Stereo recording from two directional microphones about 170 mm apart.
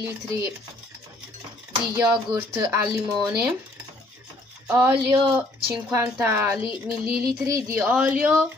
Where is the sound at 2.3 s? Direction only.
25° right (ahead or behind).